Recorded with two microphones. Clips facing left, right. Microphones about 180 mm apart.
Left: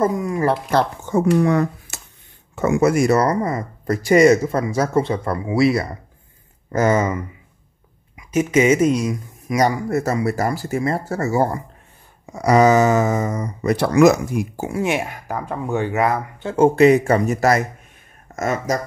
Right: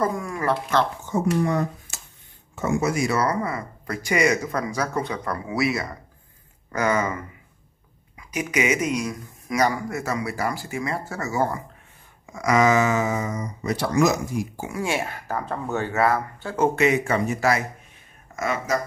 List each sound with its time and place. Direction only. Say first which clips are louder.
0.0 s speech: left 6 dB; 20° left (ahead or behind)
1.1 s speech: left 6 dB; 70° left (ahead or behind); by 7.1 s 40° left (ahead or behind)
8.2 s a sound: left 9 dB; 25° left (ahead or behind)
8.9 s speech: left 5 dB; 25° left (ahead or behind)
9.8 s speech: left 7 dB; 40° left (ahead or behind); by 14.4 s 60° left (ahead or behind)
14.7 s speech: left 5 dB; 20° left (ahead or behind)
16.5 s speech: left 8 dB; 30° left (ahead or behind)